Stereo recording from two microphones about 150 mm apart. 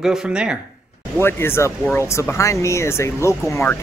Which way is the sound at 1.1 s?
15° left (ahead or behind).